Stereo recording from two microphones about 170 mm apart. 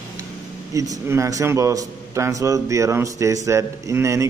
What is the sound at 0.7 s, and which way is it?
A man's voice, 20° right (ahead or behind).